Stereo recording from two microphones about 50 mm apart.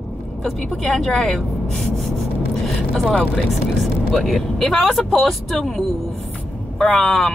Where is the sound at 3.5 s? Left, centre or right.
Centre.